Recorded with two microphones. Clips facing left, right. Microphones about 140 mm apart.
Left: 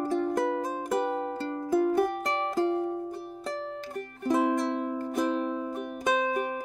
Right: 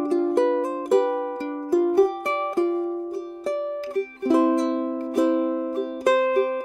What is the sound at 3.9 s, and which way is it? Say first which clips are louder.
Music: right 7 dB; 75° right (ahead or behind).